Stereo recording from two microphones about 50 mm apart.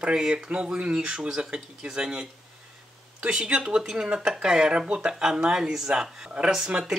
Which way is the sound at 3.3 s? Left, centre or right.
Centre.